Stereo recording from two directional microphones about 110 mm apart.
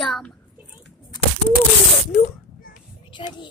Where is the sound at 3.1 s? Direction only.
45° left (ahead or behind).